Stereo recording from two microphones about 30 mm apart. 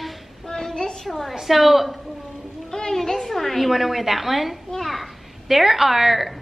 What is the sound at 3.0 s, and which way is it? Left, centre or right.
A woman's voice, centre.